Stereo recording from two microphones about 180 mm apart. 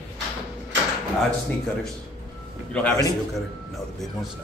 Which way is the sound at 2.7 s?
10° left (ahead or behind).